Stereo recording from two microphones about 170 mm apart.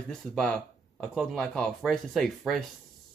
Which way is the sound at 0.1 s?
5° left (ahead or behind).